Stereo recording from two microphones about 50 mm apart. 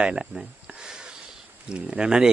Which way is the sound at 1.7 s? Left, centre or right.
Centre.